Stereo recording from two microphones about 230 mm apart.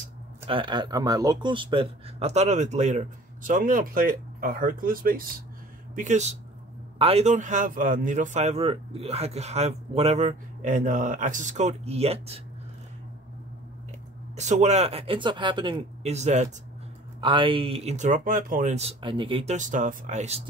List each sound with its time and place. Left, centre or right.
0.5 s speech: right
14.3 s speech: right